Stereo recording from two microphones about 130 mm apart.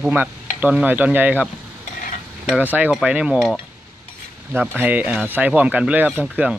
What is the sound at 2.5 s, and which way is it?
Speech, 15° right (ahead or behind).